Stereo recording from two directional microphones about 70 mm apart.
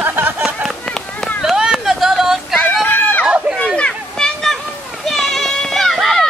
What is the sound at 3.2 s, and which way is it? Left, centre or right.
Chatter, centre.